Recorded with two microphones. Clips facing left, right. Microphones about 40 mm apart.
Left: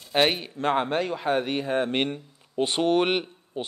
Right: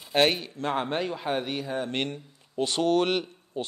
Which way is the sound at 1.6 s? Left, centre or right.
Left.